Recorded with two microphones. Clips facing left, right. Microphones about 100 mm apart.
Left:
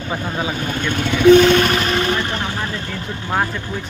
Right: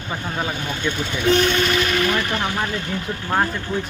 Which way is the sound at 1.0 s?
85° left.